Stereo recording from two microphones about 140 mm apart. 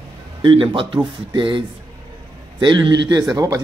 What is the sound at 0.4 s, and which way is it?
A man's voice, 35° right (ahead or behind).